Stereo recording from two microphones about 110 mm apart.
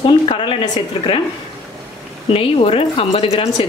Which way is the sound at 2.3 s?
55° left (ahead or behind).